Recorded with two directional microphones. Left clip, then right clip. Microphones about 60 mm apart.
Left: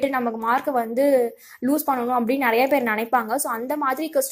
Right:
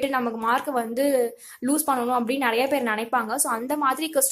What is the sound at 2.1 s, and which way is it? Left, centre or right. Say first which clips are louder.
A woman's voice: left 3 dB; left.